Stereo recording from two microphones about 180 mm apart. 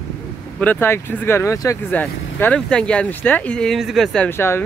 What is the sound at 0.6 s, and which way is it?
Speech, 10° left (ahead or behind).